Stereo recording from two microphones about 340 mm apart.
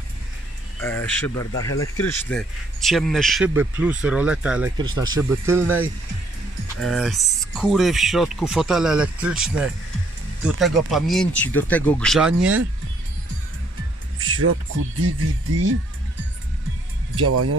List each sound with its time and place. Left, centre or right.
0.8 s speech: centre
14.4 s speech: right
17.1 s speech: right